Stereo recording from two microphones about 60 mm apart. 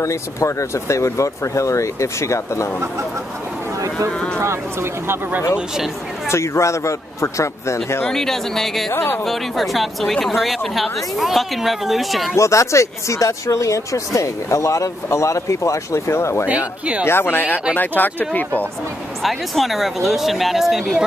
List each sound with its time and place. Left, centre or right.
0.0 s speech: left
6.2 s speech: left
8.1 s speech: centre
8.9 s speech: left
9.2 s speech: centre
12.4 s speech: left
16.4 s speech: centre
17.0 s speech: left
19.2 s speech: centre